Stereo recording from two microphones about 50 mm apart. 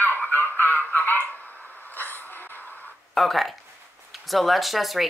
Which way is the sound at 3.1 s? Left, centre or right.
Centre.